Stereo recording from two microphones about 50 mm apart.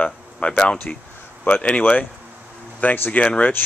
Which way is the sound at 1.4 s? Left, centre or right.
Left.